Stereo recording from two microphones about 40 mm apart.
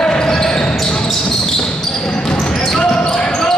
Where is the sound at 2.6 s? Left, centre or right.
Centre.